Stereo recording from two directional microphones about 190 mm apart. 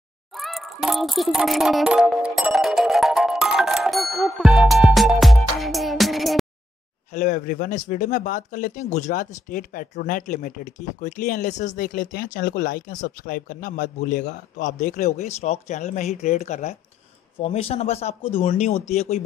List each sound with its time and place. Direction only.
0.3 s music: centre (ahead or behind)
7.1 s speech: 40° left (ahead or behind)